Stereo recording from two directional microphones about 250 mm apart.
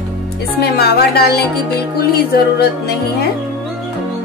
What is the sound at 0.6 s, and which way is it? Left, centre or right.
Speech, left.